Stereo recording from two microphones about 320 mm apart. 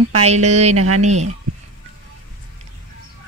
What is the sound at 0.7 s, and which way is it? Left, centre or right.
Speech, right.